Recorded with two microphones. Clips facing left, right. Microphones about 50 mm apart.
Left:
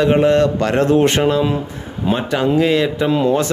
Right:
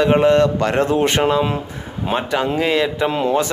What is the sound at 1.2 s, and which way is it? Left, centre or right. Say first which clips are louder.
Speech: left 1 dB; centre.